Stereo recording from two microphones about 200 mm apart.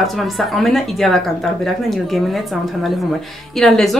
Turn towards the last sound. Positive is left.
turn(degrees=0)  # may be behind; listen again after turning